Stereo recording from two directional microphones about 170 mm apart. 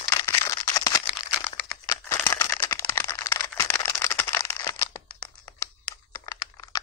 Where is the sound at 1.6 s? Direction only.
15° left (ahead or behind).